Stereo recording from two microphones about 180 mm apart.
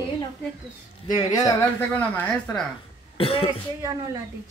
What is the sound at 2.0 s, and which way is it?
Speech, 5° left (ahead or behind).